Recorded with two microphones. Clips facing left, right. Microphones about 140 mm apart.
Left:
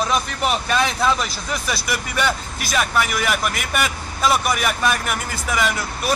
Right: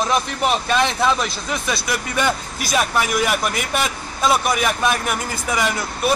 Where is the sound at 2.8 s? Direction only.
15° right (ahead or behind).